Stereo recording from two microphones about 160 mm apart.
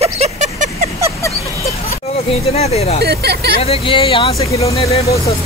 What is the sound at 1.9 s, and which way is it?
Speech, 40° left (ahead or behind).